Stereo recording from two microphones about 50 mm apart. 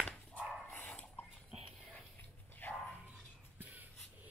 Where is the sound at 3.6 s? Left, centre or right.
Right.